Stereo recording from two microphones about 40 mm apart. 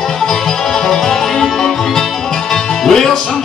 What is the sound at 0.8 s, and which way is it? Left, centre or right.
Music, centre.